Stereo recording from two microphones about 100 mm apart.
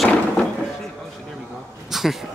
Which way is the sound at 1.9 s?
Centre (ahead or behind).